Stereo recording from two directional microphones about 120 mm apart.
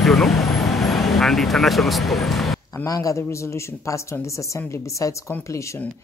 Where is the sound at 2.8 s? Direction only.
30° left (ahead or behind).